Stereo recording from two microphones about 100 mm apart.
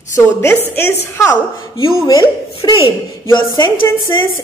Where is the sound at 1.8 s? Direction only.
35° left (ahead or behind).